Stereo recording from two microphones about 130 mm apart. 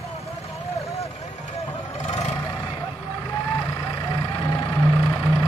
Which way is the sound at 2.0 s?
55° left (ahead or behind).